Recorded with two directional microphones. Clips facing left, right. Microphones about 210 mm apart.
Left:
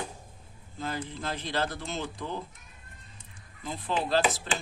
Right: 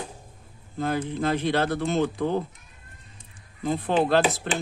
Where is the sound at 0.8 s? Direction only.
60° right (ahead or behind).